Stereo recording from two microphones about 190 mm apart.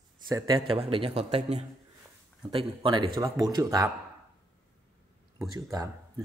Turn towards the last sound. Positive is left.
turn(degrees=-20)  # may be behind; listen again after turning